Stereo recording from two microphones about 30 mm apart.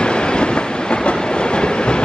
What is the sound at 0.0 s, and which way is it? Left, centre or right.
Train, left.